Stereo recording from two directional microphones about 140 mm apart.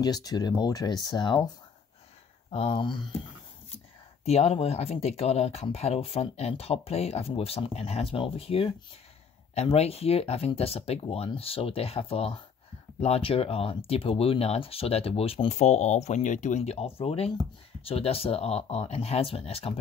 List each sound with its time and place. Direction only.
0.0 s speech: 30° left (ahead or behind)
2.5 s speech: 40° left (ahead or behind)
4.2 s speech: 45° left (ahead or behind)